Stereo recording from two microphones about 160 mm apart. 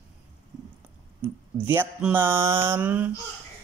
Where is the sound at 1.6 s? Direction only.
10° right (ahead or behind).